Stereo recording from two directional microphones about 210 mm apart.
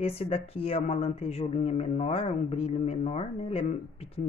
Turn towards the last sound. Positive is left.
turn(degrees=30)  # may be behind; listen again after turning